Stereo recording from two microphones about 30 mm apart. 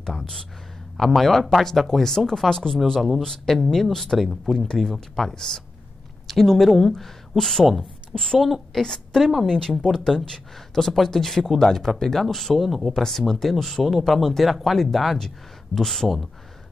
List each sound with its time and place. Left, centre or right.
0.9 s speech: centre
2.0 s speech: centre
6.2 s a woman's voice: centre
8.1 s a woman's voice: left
8.4 s speech: centre
9.5 s speech: centre
10.1 s speech: left
10.8 s speech: centre
12.6 s speech: centre
13.3 s speech: centre
13.7 s speech: centre